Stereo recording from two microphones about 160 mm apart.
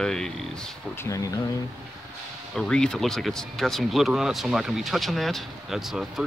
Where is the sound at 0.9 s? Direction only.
20° left (ahead or behind).